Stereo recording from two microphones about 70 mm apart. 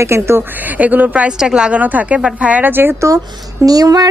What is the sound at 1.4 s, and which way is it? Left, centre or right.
Speech, centre.